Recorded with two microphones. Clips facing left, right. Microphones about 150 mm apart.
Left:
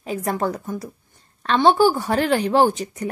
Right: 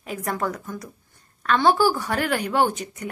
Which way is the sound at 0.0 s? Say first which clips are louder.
Left 4 dB; 30° left (ahead or behind).